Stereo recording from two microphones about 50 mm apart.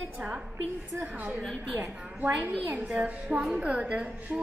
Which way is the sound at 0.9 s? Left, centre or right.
Right.